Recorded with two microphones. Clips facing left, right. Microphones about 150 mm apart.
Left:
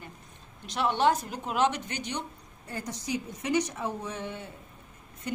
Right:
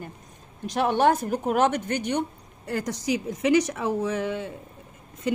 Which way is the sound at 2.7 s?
90° right.